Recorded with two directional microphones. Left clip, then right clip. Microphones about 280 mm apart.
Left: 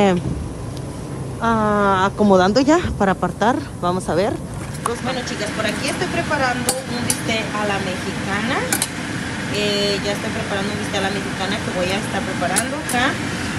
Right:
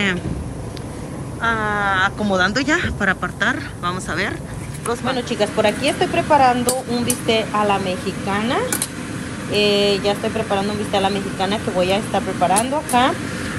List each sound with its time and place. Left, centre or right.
1.4 s speech: left
5.4 s speech: centre
13.1 s a sound: centre